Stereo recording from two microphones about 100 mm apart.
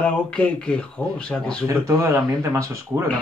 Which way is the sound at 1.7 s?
30° right (ahead or behind).